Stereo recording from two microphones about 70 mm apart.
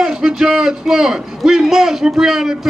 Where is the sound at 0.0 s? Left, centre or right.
Centre.